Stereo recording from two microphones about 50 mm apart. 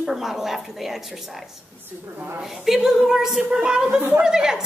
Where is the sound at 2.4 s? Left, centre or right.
Centre.